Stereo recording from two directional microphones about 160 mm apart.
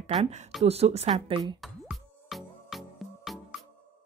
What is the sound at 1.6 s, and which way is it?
Music, centre (ahead or behind).